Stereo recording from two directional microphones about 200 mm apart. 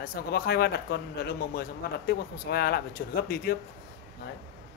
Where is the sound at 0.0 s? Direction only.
50° left (ahead or behind).